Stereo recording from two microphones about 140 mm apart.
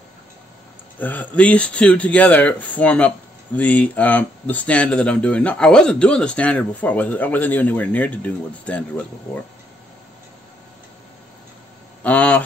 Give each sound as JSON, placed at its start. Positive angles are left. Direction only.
{"t": 0.9, "sound": "speech", "side_deg": 10}
{"t": 12.0, "sound": "speech", "side_deg": 10}